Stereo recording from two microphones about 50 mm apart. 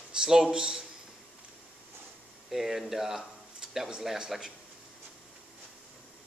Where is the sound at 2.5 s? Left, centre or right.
Centre.